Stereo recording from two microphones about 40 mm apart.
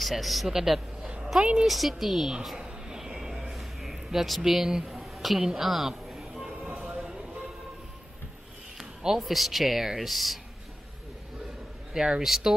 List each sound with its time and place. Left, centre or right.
0.0 s a man's voice: centre
1.7 s speech: centre
2.5 s a sound: centre
6.8 s a sound: right
8.7 s speech: centre
11.9 s speech: centre